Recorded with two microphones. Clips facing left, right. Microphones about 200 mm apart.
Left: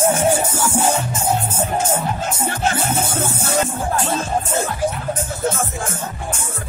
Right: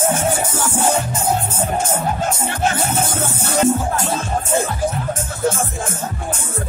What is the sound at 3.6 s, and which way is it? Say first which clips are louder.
Music: right 5 dB; 40° right (ahead or behind).